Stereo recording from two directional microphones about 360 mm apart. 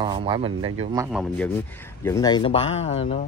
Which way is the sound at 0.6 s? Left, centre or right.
Right.